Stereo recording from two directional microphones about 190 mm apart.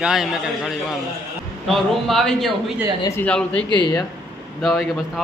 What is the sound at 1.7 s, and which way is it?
A man's voice, centre (ahead or behind).